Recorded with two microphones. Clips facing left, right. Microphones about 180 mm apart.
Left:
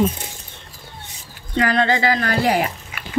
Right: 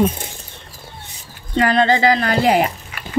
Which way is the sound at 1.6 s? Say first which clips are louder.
Right 3 dB; 25° right (ahead or behind).